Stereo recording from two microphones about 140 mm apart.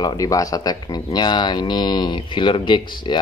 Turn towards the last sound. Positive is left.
turn(degrees=35)  # may be behind; listen again after turning